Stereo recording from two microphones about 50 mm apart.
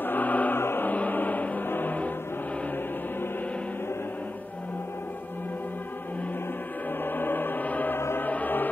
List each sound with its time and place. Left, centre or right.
0.0 s choir: left
0.6 s choir: left
0.8 s choir: left
1.7 s music: left
7.1 s music: left
7.9 s music: left
8.3 s music: left